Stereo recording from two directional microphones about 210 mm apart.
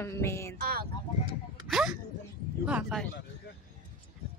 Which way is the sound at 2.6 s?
5° right (ahead or behind).